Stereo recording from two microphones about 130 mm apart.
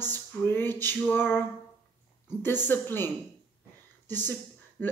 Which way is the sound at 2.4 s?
15° left (ahead or behind).